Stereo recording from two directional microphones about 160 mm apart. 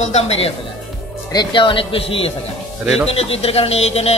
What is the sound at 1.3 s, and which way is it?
Speech, 30° left (ahead or behind).